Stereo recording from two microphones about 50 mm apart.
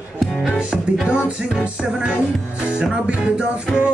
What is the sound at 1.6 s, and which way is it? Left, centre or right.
Music, right.